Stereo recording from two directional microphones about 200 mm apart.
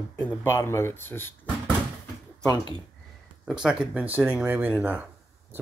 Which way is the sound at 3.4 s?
5° right (ahead or behind).